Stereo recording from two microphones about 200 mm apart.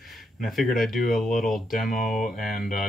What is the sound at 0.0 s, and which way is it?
Speech, centre (ahead or behind).